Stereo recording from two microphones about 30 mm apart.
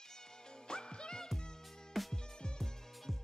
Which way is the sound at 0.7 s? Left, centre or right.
Left.